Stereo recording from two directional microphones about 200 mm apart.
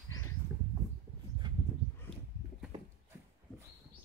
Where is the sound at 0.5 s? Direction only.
20° right (ahead or behind).